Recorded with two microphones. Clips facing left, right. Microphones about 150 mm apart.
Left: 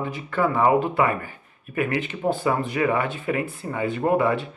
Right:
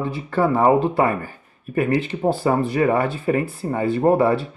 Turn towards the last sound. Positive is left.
turn(degrees=-35)  # may be behind; listen again after turning